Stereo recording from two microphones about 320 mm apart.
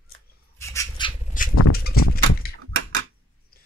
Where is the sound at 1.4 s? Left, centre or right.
Left.